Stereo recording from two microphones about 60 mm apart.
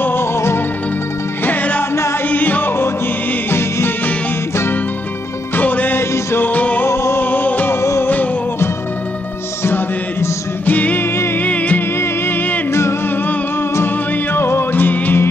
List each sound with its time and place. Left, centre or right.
0.0 s music: left
1.4 s music: left
5.6 s music: left
5.9 s music: left
6.5 s music: left
6.9 s music: left
7.2 s music: left
10.6 s music: left
12.0 s music: left
14.3 s music: left